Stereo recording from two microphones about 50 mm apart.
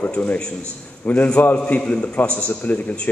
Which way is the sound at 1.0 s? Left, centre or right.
Left.